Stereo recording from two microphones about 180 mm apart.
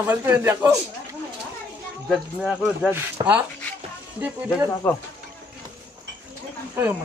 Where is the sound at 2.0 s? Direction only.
5° right (ahead or behind).